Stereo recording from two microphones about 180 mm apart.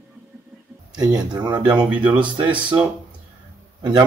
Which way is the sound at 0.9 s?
25° right (ahead or behind).